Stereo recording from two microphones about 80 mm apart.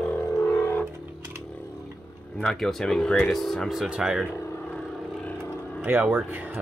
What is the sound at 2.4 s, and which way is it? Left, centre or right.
Speech, centre.